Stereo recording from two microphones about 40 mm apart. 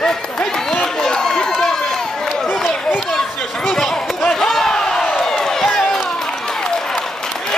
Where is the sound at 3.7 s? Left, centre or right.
Centre.